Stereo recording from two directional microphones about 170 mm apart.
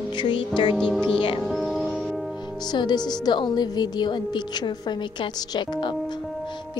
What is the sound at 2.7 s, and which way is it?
A woman's voice, 25° left (ahead or behind).